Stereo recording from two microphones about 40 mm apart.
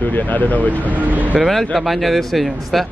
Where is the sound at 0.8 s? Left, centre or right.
Right.